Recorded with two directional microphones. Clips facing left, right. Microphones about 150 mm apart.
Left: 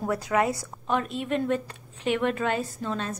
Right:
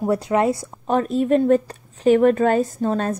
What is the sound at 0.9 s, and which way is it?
Speech, 40° right (ahead or behind).